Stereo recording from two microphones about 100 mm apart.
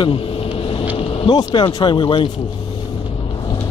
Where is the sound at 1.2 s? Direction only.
45° left (ahead or behind).